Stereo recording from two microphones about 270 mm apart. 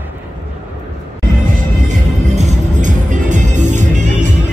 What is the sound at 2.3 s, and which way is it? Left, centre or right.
Music, right.